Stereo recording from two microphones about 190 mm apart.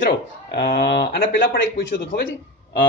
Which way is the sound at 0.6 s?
60° left (ahead or behind).